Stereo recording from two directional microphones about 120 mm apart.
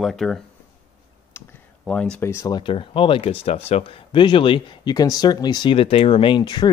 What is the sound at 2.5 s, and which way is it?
Speech, 40° left (ahead or behind).